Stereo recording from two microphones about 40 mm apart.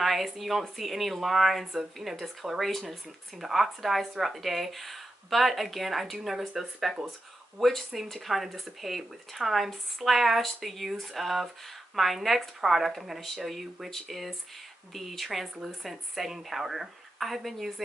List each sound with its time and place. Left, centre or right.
0.0 s speech: centre